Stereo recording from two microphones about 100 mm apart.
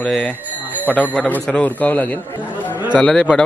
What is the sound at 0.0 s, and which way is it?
A man's voice, 10° left (ahead or behind).